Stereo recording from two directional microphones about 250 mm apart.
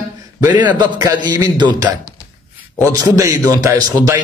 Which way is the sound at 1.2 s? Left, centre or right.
Centre.